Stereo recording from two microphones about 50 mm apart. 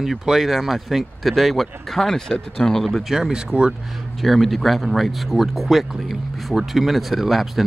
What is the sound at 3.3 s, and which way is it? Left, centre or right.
Speech, centre.